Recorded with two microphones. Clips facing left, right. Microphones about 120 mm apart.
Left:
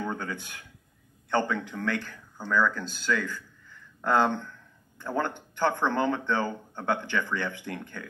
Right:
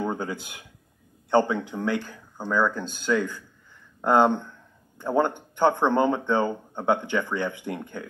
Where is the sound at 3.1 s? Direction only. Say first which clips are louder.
Right 5 dB; 20° right (ahead or behind).